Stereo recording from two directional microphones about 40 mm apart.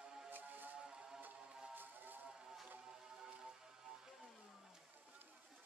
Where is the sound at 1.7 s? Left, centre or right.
Right.